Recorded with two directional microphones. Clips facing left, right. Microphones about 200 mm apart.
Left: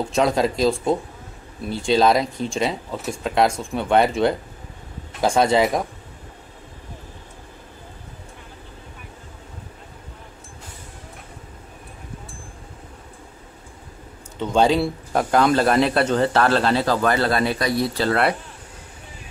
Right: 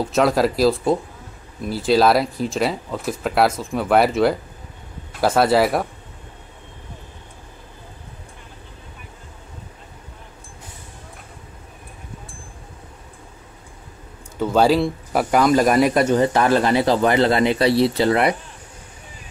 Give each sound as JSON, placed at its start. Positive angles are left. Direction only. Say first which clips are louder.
{"t": 0.0, "sound": "speech", "louder": "right 2 dB", "side_deg": -5}
{"t": 14.4, "sound": "speech", "louder": "right 2 dB", "side_deg": -5}